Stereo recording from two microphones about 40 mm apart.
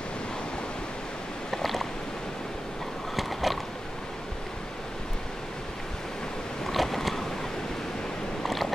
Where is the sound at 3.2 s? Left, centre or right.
Centre.